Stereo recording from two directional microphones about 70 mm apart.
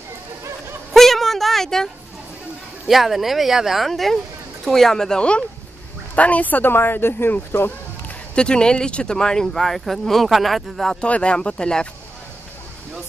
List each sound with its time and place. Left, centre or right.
0.9 s a sound: centre
2.9 s speech: centre; by 7.7 s left
8.4 s speech: centre
11.0 s speech: centre